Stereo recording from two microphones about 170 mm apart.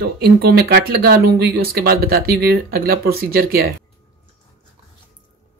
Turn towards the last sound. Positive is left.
turn(degrees=-60)  # may be behind; listen again after turning